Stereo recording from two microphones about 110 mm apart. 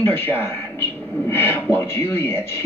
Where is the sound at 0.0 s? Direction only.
20° left (ahead or behind).